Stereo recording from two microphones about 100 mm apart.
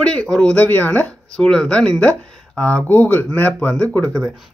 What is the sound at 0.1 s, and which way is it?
Speech, 10° left (ahead or behind).